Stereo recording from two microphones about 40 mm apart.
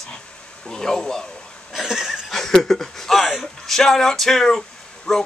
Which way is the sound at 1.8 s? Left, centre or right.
Centre.